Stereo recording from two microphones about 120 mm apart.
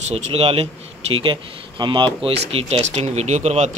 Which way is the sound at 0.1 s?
55° right (ahead or behind).